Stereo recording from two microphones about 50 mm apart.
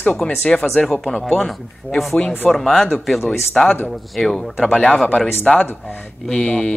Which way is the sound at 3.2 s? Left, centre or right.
Centre.